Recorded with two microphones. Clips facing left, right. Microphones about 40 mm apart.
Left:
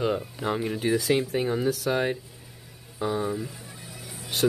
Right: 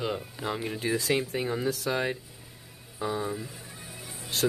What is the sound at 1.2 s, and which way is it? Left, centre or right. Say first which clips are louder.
Speech: left 4 dB; centre.